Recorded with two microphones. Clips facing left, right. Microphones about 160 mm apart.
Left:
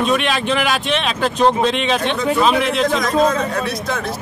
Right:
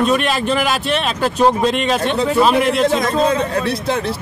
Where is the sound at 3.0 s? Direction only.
30° right (ahead or behind).